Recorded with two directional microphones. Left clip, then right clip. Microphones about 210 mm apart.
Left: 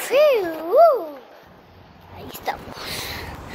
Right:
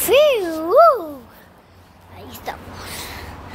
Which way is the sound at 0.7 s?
40° right (ahead or behind).